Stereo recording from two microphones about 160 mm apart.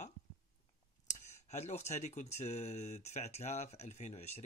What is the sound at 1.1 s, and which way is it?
Speech, 45° left (ahead or behind).